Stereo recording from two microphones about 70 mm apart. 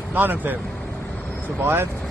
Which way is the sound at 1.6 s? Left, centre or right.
Right.